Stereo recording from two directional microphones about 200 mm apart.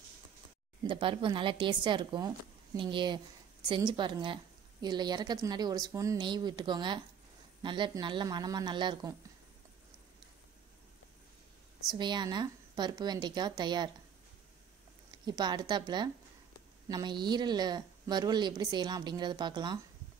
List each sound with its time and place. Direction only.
0.8 s speech: 25° right (ahead or behind)
12.0 s speech: 20° right (ahead or behind)
15.0 s speech: 20° right (ahead or behind)